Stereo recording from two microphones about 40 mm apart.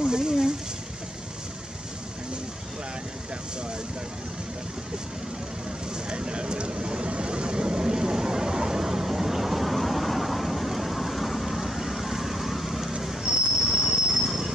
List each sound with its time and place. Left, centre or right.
0.0 s a sound: centre
6.0 s vehicle: right; by 12.9 s centre
13.2 s train: centre
13.7 s train: centre